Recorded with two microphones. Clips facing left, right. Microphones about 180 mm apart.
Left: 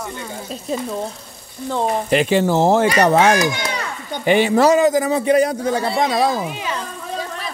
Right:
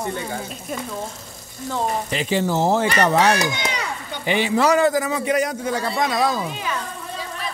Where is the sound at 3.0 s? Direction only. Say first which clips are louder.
Left 2 dB; 45° left (ahead or behind).